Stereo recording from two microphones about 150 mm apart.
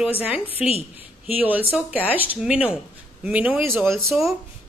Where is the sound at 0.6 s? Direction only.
40° left (ahead or behind).